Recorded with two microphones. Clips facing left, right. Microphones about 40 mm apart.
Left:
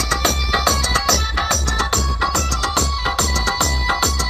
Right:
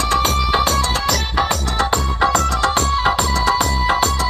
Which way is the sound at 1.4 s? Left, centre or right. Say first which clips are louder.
Right 1 dB; right.